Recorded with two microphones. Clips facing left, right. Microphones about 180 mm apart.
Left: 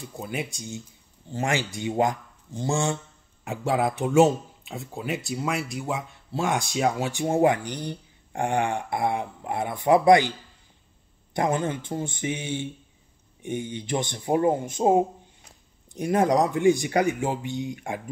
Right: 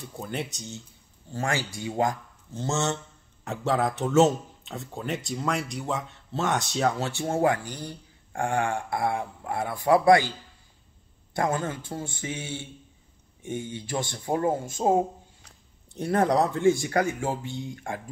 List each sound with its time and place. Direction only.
0.0 s speech: 10° left (ahead or behind)
11.3 s speech: 20° left (ahead or behind)